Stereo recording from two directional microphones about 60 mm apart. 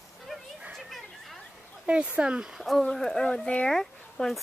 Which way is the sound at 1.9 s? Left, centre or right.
Centre.